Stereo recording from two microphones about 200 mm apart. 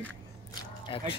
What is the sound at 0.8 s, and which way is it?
Speech, 25° left (ahead or behind).